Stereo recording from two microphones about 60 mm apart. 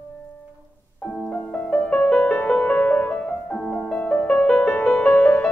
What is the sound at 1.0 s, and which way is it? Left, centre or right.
Music, left.